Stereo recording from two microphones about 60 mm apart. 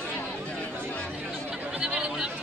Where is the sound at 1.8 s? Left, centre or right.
Centre.